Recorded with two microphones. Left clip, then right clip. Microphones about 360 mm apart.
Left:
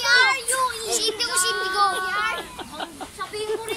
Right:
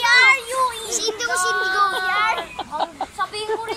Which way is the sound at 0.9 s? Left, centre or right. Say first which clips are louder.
Right 2 dB; centre.